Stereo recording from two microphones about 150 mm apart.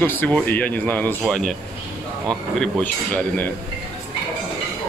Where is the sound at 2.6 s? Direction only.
10° left (ahead or behind).